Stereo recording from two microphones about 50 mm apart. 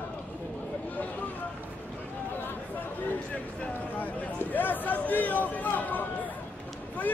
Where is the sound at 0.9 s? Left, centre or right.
Left.